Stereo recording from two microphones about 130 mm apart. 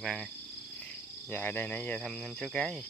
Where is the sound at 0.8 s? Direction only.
15° left (ahead or behind).